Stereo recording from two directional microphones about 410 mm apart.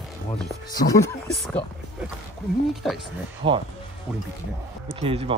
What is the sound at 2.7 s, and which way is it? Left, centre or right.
Speech, centre.